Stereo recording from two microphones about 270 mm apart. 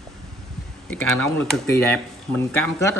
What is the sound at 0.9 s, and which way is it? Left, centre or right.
Speech, centre.